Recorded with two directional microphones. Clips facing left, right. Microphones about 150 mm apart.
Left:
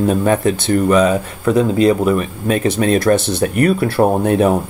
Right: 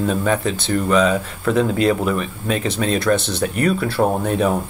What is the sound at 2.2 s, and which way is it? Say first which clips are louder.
Speech: left 5 dB; 50° left (ahead or behind).